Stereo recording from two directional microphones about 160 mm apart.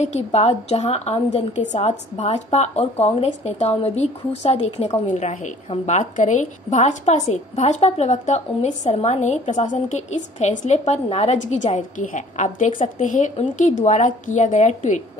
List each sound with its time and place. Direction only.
0.0 s a woman's voice: 45° left (ahead or behind)